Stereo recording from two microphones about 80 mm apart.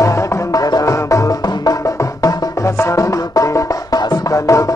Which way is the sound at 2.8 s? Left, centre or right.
Left.